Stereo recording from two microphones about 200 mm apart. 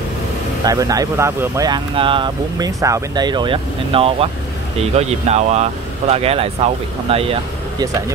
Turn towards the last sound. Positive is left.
turn(degrees=-30)  # may be behind; listen again after turning